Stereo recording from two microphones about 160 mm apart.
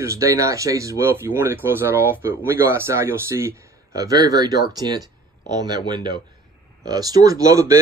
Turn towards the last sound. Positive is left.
turn(degrees=-20)  # may be behind; listen again after turning